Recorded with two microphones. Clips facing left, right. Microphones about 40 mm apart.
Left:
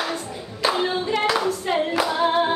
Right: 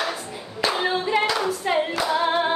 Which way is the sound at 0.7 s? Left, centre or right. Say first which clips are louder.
Right 3 dB; centre.